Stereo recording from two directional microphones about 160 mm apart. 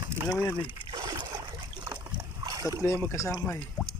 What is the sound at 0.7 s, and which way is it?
Boat, 30° right (ahead or behind).